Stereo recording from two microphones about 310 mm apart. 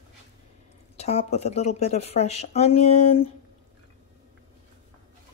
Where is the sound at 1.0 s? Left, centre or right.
Left.